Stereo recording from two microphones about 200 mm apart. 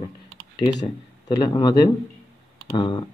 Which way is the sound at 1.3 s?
20° left (ahead or behind).